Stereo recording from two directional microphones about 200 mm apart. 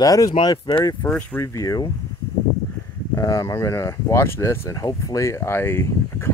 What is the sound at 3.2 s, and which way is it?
Speech, 15° left (ahead or behind).